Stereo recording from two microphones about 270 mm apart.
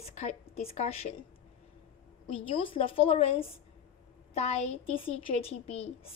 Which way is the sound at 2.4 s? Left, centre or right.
Centre.